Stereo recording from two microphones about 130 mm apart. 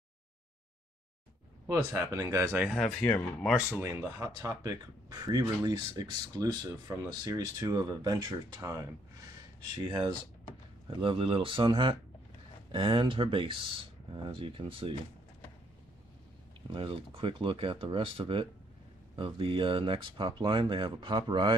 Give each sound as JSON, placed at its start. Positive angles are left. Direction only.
{"t": 1.7, "sound": "speech", "side_deg": -20}
{"t": 2.6, "sound": "speech", "side_deg": 0}
{"t": 3.8, "sound": "speech", "side_deg": -20}
{"t": 16.7, "sound": "speech", "side_deg": -45}